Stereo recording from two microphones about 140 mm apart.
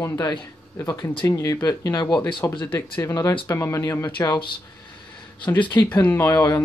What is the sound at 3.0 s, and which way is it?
Speech, 25° left (ahead or behind).